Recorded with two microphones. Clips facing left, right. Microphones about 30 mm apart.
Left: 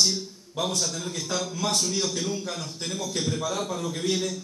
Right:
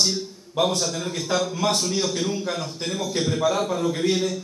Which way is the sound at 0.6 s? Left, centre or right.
Centre.